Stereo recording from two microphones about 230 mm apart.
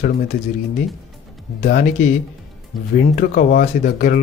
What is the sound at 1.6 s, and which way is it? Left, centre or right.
A man's voice, left.